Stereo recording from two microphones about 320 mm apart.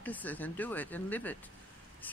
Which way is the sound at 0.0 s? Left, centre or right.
Centre.